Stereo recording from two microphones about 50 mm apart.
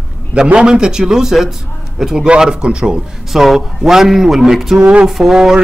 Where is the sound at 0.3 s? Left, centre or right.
Right.